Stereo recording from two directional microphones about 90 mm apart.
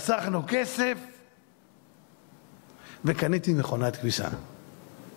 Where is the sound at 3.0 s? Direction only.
15° left (ahead or behind).